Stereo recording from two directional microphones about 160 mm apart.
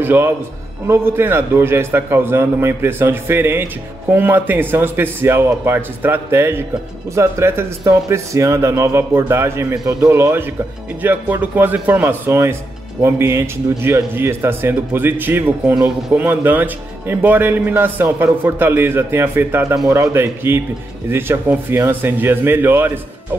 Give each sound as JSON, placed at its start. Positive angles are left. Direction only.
{"t": 0.0, "sound": "a man's voice", "side_deg": -15}